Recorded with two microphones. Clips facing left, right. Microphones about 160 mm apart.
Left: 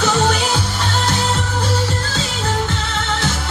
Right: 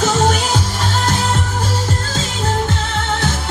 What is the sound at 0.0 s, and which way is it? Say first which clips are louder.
Music: right 1 dB; 40° right (ahead or behind).